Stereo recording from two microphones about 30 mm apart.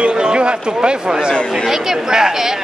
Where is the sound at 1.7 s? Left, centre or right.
Centre.